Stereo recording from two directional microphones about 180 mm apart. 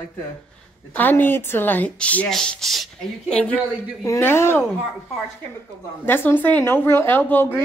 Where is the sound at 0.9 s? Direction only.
10° left (ahead or behind).